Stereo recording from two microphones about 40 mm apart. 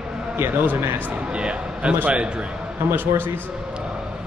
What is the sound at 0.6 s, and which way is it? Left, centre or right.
Speech, right.